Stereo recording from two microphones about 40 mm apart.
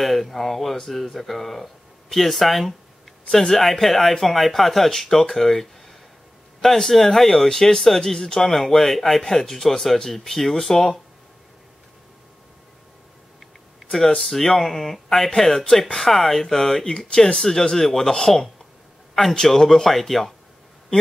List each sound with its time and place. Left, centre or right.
0.0 s speech: centre
14.3 s speech: centre
19.3 s speech: centre